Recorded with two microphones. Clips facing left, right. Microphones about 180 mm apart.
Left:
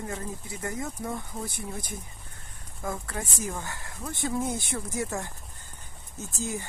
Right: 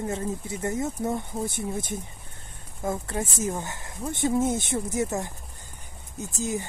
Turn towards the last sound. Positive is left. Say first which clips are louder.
# right 4 dB
turn(degrees=-20)  # may be behind; listen again after turning